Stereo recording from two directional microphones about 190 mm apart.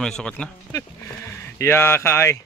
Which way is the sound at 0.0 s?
5° left (ahead or behind).